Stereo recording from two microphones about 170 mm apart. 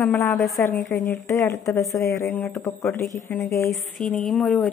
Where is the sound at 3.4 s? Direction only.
15° left (ahead or behind).